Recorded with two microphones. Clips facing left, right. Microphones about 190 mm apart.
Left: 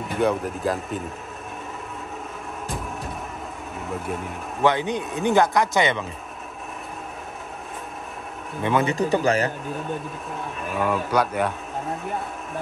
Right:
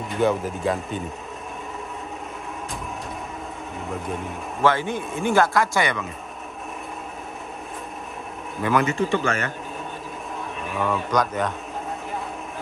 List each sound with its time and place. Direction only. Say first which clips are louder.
0.2 s speech: right 1 dB; centre (ahead or behind)
4.6 s speech: even; 20° left (ahead or behind)
8.6 s speech: even; 25° left (ahead or behind)
8.9 s a man's voice: left 2 dB; 40° left (ahead or behind)
10.8 s speech: left 1 dB; 10° left (ahead or behind)